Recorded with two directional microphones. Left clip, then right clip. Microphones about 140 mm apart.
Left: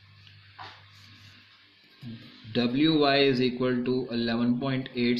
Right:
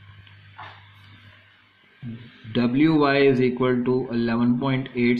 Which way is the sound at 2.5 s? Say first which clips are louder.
Right 4 dB; 30° right (ahead or behind).